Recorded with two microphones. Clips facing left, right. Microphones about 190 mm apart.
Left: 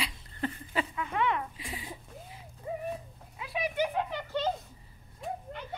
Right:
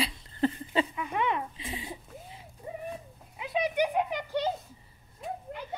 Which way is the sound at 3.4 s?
20° right (ahead or behind).